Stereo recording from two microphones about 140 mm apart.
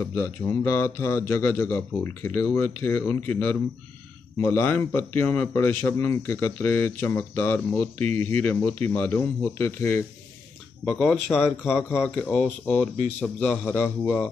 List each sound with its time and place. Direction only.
0.0 s a man's voice: 15° left (ahead or behind)
10.9 s a man's voice: 5° left (ahead or behind)
11.4 s speech: 5° right (ahead or behind)
12.2 s a man's voice: 10° left (ahead or behind)